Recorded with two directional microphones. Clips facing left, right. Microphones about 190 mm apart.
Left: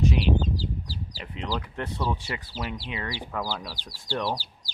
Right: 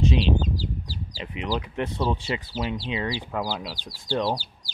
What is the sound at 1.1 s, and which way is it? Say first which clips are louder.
Speech: right 4 dB; 15° right (ahead or behind).